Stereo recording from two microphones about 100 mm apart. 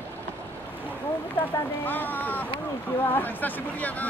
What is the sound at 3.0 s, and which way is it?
Speech, 20° left (ahead or behind).